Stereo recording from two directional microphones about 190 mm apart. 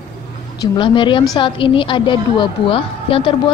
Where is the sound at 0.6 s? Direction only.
25° left (ahead or behind).